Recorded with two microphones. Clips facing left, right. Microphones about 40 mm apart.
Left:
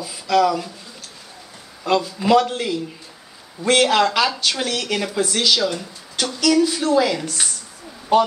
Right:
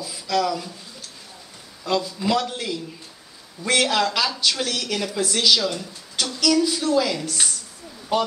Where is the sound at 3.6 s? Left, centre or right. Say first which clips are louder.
Left 5 dB; left.